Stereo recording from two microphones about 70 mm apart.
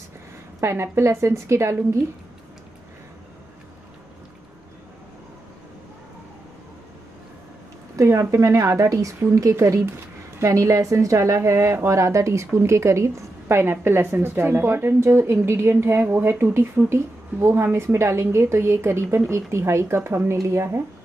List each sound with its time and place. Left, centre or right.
0.6 s a woman's voice: right
7.9 s a woman's voice: right